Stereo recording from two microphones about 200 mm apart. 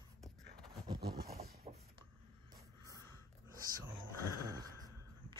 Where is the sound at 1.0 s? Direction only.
50° right (ahead or behind).